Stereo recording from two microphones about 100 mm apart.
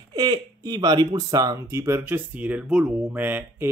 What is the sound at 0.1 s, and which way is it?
Speech, 40° right (ahead or behind).